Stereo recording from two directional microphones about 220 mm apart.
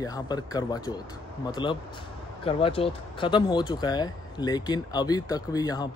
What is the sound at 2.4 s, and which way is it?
A man's voice, 25° left (ahead or behind).